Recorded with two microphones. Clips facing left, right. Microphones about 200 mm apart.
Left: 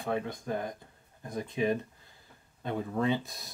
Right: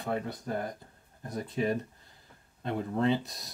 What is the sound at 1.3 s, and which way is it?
Speech, 20° left (ahead or behind).